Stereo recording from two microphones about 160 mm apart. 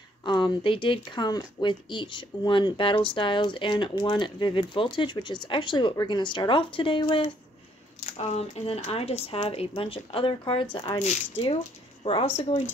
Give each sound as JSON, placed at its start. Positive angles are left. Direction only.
{"t": 0.2, "sound": "speech", "side_deg": 30}
{"t": 8.0, "sound": "speech", "side_deg": 45}
{"t": 11.0, "sound": "speech", "side_deg": 40}